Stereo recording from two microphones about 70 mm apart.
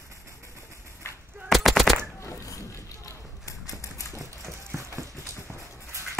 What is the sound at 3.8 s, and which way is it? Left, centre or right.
Typewriter, left.